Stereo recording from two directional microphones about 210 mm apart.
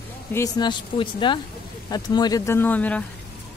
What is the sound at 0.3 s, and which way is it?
Speech, 15° left (ahead or behind).